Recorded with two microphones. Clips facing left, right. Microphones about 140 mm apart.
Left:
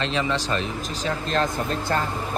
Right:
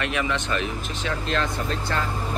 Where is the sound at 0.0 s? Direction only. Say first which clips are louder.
Left 1 dB; 30° left (ahead or behind).